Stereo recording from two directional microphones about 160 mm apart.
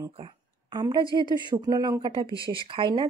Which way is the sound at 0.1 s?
35° right (ahead or behind).